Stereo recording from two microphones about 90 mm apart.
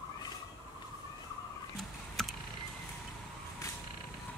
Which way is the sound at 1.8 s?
5° left (ahead or behind).